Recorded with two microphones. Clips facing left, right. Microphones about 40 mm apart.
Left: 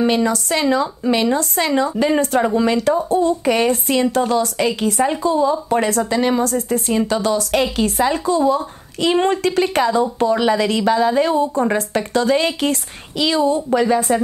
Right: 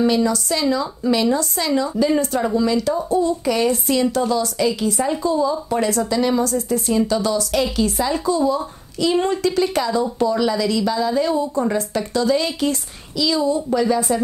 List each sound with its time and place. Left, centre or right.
0.0 s a woman's voice: left
13.6 s a woman's voice: left